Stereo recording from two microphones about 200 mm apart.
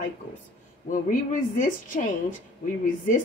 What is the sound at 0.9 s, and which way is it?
A woman's voice, 40° left (ahead or behind).